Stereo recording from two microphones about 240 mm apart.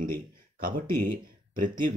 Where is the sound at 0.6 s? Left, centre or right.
Right.